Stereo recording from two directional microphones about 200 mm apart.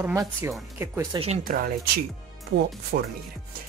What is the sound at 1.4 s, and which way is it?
Speech, 45° right (ahead or behind).